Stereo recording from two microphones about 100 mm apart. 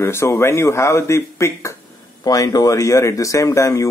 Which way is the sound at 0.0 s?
25° left (ahead or behind).